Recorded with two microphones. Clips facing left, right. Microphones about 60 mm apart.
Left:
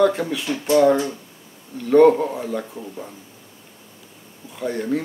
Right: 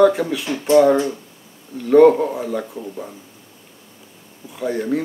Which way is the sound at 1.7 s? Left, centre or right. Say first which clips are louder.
Right 2 dB; centre.